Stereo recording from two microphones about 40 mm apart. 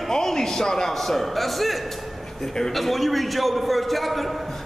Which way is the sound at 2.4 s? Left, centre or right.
Centre.